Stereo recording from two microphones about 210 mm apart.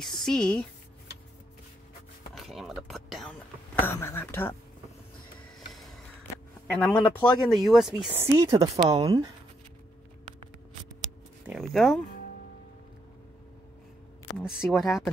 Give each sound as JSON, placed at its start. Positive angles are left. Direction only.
{"t": 0.0, "sound": "speech", "side_deg": 0}
{"t": 2.3, "sound": "a sound", "side_deg": 0}
{"t": 6.7, "sound": "speech", "side_deg": 10}
{"t": 11.4, "sound": "speech", "side_deg": 0}
{"t": 14.7, "sound": "speech", "side_deg": 0}